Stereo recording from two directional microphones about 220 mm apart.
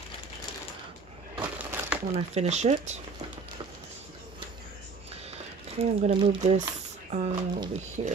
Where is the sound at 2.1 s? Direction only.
30° right (ahead or behind).